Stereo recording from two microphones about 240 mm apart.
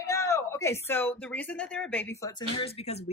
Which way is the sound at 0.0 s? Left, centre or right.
Centre.